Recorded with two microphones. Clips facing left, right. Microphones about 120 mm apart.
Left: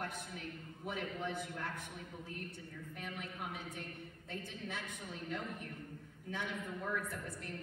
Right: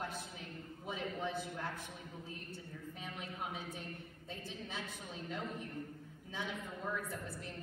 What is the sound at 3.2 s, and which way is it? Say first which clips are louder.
A woman's voice: right 5 dB; 55° left (ahead or behind).